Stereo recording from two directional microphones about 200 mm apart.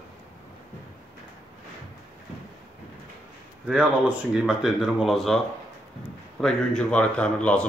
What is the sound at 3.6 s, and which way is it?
Speech, 5° right (ahead or behind).